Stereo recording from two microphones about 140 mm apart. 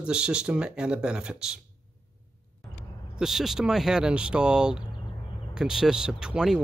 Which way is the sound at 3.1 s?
Centre (ahead or behind).